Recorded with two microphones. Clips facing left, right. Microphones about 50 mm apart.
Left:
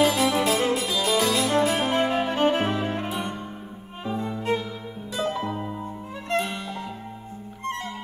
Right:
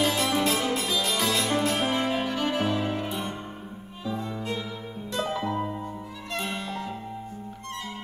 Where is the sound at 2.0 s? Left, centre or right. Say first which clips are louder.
Left 5 dB; left.